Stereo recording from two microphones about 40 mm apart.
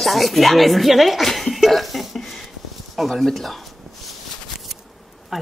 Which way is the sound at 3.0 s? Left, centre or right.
Centre.